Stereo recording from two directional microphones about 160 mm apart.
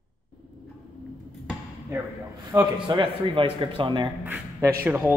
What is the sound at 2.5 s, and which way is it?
A man's voice, 20° right (ahead or behind).